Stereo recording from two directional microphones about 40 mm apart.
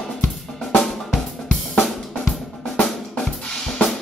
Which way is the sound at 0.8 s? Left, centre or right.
Centre.